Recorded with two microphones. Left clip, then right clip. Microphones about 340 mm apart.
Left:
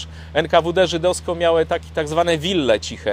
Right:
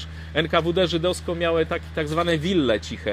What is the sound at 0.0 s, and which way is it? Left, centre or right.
Speech, left.